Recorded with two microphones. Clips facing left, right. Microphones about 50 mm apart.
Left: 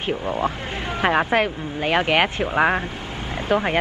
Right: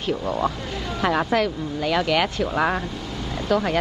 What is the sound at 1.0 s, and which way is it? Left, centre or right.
Speech, left.